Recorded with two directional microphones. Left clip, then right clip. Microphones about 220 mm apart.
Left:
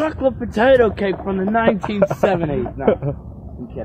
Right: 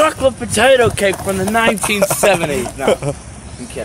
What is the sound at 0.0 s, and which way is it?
Speech, 35° left (ahead or behind).